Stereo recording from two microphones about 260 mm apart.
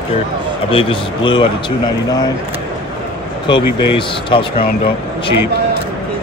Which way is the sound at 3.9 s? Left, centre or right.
Centre.